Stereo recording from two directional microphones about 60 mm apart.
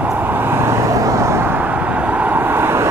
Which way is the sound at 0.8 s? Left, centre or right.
Right.